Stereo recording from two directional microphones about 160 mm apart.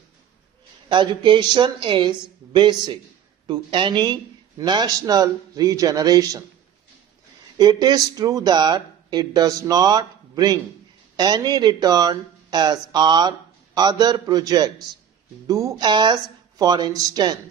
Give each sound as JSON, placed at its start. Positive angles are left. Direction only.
{"t": 0.8, "sound": "speech", "side_deg": -30}
{"t": 7.5, "sound": "speech", "side_deg": -25}